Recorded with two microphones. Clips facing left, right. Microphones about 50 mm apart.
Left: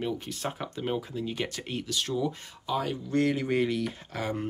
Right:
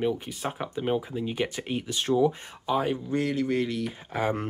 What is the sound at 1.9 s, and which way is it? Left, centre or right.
Speech, right.